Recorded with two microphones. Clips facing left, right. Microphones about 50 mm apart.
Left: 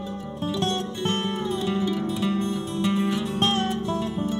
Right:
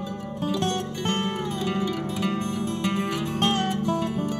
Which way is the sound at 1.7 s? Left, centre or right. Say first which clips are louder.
Left 2 dB; right.